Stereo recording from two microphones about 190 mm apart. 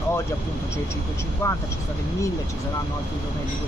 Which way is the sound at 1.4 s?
15° left (ahead or behind).